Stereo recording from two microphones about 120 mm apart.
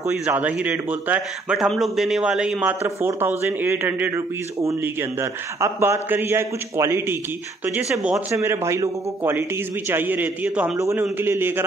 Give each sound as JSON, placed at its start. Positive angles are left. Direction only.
{"t": 0.2, "sound": "a man's voice", "side_deg": -10}
{"t": 1.7, "sound": "a man's voice", "side_deg": 0}
{"t": 3.0, "sound": "a man's voice", "side_deg": -20}
{"t": 7.9, "sound": "a man's voice", "side_deg": -5}
{"t": 8.3, "sound": "a man's voice", "side_deg": -25}
{"t": 10.8, "sound": "a man's voice", "side_deg": -20}